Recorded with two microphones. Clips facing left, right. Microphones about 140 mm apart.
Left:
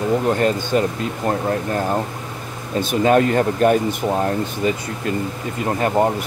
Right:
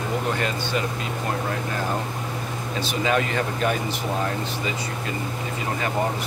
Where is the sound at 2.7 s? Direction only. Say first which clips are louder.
Left 8 dB; 50° left (ahead or behind).